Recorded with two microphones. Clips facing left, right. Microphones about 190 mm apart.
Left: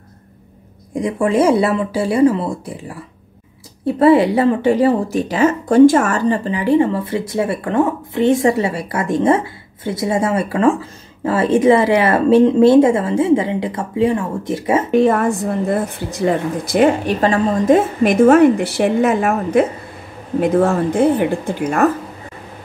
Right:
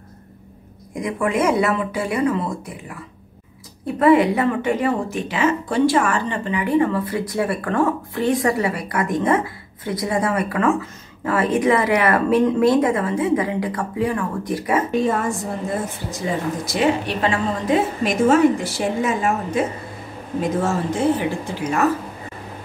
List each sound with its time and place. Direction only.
0.9 s speech: 30° left (ahead or behind)
14.9 s a woman's voice: 65° left (ahead or behind)